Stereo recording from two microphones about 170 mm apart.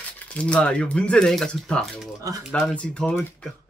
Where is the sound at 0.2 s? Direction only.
5° left (ahead or behind).